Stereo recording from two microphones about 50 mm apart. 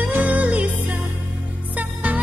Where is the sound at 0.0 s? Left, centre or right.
Right.